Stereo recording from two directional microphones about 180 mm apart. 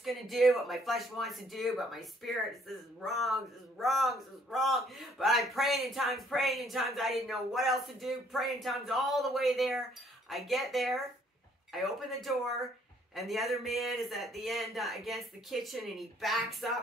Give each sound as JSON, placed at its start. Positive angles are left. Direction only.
{"t": 0.0, "sound": "a man's voice", "side_deg": 0}